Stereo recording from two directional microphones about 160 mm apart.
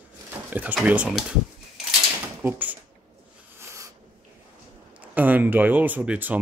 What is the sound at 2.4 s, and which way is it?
Speech, 10° right (ahead or behind).